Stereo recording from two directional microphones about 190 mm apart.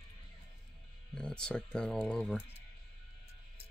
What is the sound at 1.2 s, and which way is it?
Speech, 5° left (ahead or behind).